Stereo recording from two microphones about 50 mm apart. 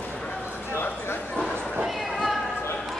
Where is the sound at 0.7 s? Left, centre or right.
Left.